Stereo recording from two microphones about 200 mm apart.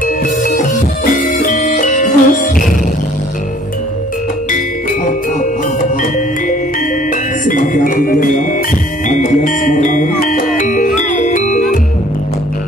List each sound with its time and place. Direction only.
0.0 s music: 45° left (ahead or behind)
7.4 s music: 40° left (ahead or behind)